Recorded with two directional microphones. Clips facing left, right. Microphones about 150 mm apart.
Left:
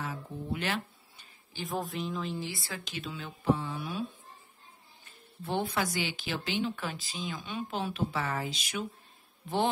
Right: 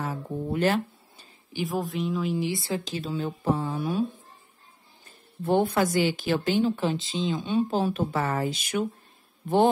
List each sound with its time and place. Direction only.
0.0 s guitar: 45° right (ahead or behind)
1.7 s speech: centre (ahead or behind)
2.3 s speech: 20° right (ahead or behind); by 4.0 s 45° right (ahead or behind)
5.0 s speech: 50° right (ahead or behind)
6.7 s speech: 25° right (ahead or behind); by 8.8 s 50° right (ahead or behind)